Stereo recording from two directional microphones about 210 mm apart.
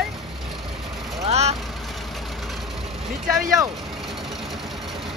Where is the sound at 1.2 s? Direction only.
30° right (ahead or behind).